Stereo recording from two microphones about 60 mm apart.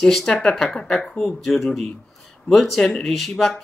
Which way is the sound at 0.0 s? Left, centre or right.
Centre.